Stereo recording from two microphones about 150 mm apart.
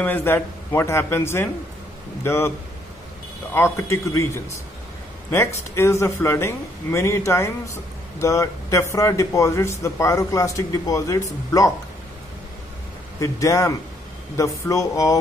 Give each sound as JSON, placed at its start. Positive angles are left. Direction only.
{"t": 0.0, "sound": "a man's voice", "side_deg": 15}
{"t": 3.5, "sound": "a man's voice", "side_deg": 15}
{"t": 5.3, "sound": "a man's voice", "side_deg": 15}
{"t": 13.2, "sound": "speech", "side_deg": 20}